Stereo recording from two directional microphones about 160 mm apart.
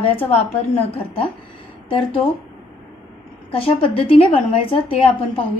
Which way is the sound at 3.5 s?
35° left (ahead or behind).